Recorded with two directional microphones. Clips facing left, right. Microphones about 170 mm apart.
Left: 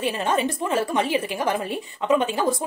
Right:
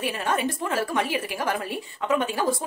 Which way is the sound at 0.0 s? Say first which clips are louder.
Left 3 dB; 25° left (ahead or behind).